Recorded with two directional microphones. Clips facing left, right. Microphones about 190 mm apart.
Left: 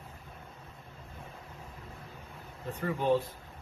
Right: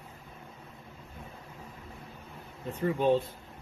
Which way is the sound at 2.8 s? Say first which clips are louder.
Right 3 dB; 25° right (ahead or behind).